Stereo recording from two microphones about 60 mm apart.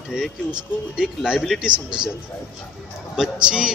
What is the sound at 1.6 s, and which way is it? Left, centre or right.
Speech, centre.